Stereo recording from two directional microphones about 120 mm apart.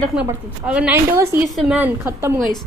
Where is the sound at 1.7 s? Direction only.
15° right (ahead or behind).